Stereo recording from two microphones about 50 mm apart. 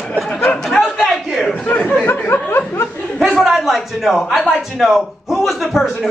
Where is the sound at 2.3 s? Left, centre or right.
Left.